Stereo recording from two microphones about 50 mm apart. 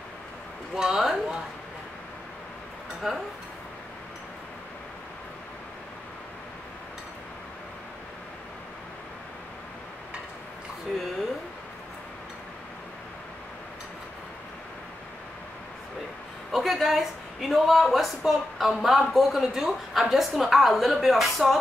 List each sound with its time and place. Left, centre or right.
0.7 s speech: centre
3.0 s speech: centre
16.5 s speech: centre